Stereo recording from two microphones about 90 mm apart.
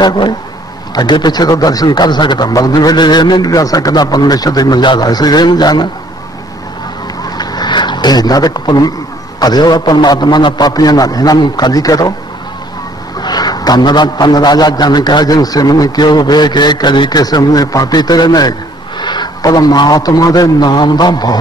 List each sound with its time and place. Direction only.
0.0 s a man's voice: 55° left (ahead or behind)
7.2 s a sound: 50° left (ahead or behind)
9.4 s a man's voice: 50° left (ahead or behind)
13.2 s a man's voice: 50° left (ahead or behind)